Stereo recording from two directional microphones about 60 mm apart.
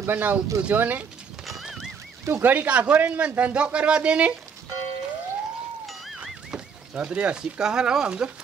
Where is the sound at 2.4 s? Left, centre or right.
Right.